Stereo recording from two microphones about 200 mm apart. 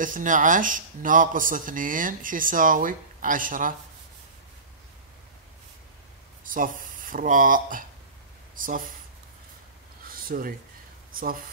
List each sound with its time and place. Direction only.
0.0 s speech: 40° right (ahead or behind)
6.4 s speech: 45° right (ahead or behind)
10.0 s a sound: 45° right (ahead or behind)